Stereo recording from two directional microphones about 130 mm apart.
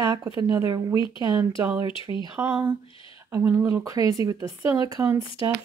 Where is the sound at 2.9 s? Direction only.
40° left (ahead or behind).